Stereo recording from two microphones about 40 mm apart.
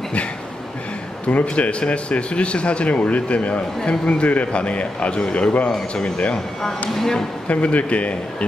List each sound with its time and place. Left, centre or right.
1.2 s a man's voice: left
6.9 s speech: centre
7.4 s speech: left